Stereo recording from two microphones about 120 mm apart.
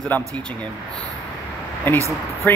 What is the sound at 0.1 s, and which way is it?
Speech, 15° left (ahead or behind).